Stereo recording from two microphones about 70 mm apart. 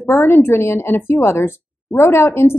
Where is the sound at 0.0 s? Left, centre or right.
Left.